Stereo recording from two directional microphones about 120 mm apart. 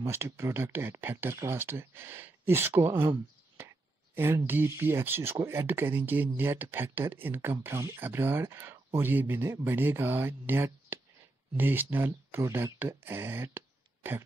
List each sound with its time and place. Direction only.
0.0 s speech: 20° right (ahead or behind)